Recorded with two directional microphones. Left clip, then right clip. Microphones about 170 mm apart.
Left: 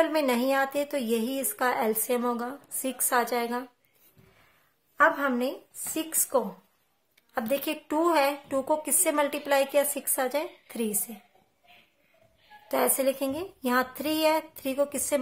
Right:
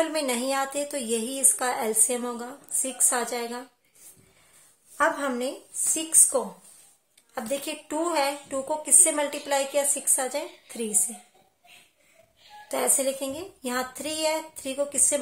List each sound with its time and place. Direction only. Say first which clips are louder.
0.0 s a woman's voice: left 2 dB; 20° left (ahead or behind)
4.9 s a woman's voice: left 2 dB; 15° left (ahead or behind)
12.6 s a woman's voice: left 1 dB; 25° left (ahead or behind)